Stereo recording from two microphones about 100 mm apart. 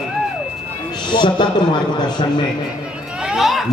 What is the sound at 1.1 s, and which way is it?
Speech, 50° left (ahead or behind).